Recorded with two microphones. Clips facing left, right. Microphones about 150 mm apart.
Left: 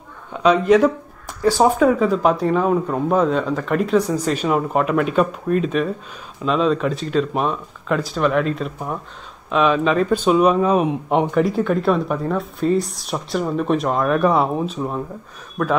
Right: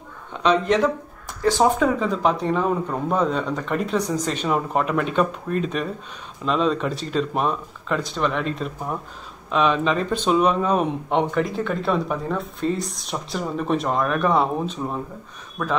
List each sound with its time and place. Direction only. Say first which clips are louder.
0.4 s speech: left 5 dB; 10° left (ahead or behind)